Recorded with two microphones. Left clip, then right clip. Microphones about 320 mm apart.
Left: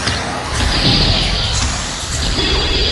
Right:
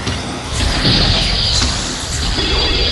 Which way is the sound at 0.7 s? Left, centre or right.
Centre.